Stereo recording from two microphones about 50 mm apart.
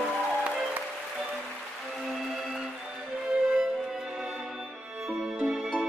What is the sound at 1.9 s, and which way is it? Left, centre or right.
Music, centre.